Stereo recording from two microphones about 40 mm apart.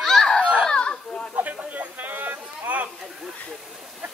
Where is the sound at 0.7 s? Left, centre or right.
Left.